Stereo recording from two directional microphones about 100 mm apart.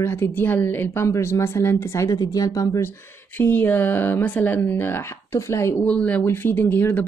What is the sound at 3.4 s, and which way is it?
Speech, 20° left (ahead or behind).